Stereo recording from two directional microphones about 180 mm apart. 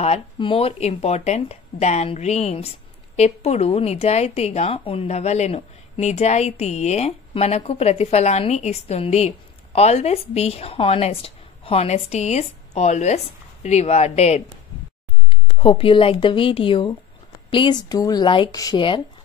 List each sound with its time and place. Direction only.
0.0 s a woman's voice: 30° left (ahead or behind)